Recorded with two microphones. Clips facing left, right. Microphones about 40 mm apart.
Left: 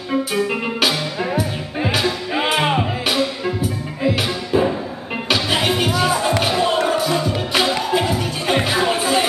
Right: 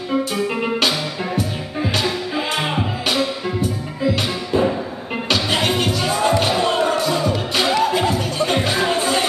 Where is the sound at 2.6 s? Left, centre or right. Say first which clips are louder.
Left 5 dB; centre.